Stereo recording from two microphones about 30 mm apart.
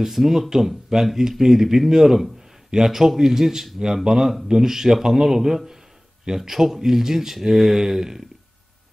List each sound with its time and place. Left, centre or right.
0.0 s speech: centre